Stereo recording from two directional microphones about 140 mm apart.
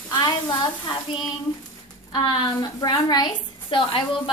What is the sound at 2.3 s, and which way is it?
A woman's voice, 35° left (ahead or behind).